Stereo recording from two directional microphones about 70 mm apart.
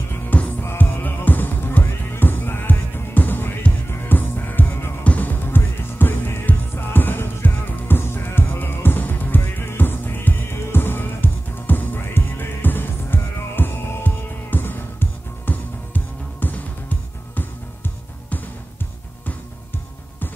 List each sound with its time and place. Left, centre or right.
0.1 s music: left